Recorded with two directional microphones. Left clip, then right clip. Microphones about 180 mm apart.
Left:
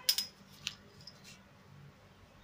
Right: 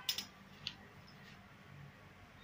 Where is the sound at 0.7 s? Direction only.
15° left (ahead or behind).